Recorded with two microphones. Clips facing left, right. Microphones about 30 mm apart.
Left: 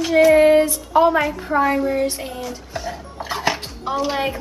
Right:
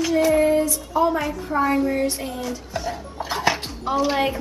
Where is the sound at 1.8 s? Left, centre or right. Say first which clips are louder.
Left 2 dB; centre.